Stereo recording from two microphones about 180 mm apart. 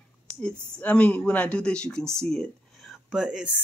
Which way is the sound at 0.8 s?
10° left (ahead or behind).